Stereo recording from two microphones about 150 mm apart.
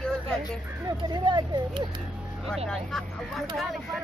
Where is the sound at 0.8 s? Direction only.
30° right (ahead or behind).